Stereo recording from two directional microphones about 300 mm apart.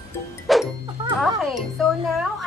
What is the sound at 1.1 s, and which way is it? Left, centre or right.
A child's voice, centre.